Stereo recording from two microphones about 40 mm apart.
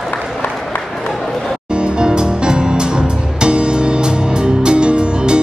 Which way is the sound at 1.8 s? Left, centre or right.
Right.